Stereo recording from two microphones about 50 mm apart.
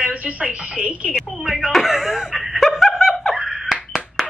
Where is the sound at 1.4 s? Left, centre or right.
Centre.